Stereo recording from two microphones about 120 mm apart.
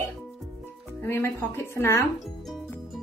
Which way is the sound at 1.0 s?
20° left (ahead or behind).